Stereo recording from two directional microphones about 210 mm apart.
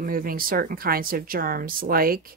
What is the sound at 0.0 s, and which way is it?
Speech, 45° right (ahead or behind).